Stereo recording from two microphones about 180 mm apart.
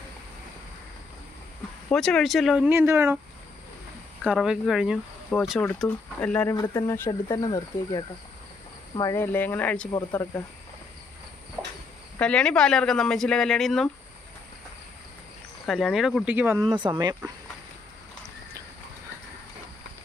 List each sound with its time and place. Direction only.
1.9 s speech: 5° left (ahead or behind); by 3.2 s 10° right (ahead or behind)
4.2 s speech: 5° right (ahead or behind)
5.6 s speech: 10° left (ahead or behind)
9.9 s speech: 20° left (ahead or behind)
12.2 s speech: 5° left (ahead or behind)
15.6 s speech: centre (ahead or behind)
16.6 s speech: 25° right (ahead or behind)